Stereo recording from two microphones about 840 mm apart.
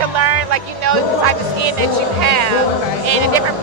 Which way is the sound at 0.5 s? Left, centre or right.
Right.